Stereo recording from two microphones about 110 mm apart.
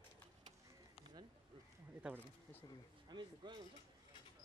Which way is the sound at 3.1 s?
45° right (ahead or behind).